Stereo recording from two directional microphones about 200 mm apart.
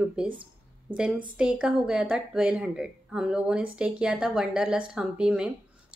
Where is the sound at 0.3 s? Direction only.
25° right (ahead or behind).